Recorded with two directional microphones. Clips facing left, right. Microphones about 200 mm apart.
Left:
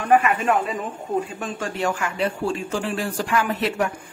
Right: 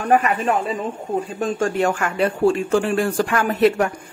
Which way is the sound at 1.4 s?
50° right (ahead or behind).